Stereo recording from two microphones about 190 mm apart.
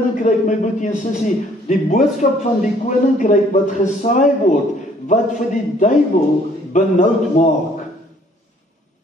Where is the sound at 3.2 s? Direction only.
40° left (ahead or behind).